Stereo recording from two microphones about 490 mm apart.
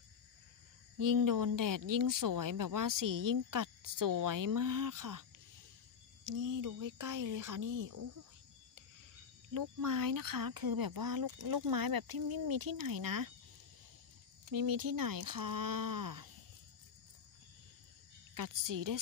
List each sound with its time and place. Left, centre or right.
0.9 s speech: right
6.2 s speech: right
9.5 s speech: right
14.5 s speech: right
18.3 s speech: right